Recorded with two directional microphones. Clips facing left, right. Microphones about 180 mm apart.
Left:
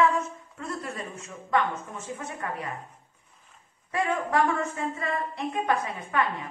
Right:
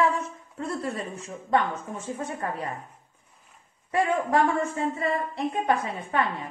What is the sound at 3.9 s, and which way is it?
A woman's voice, 30° right (ahead or behind).